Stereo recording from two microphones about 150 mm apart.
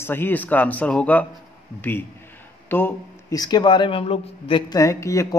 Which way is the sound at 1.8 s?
15° left (ahead or behind).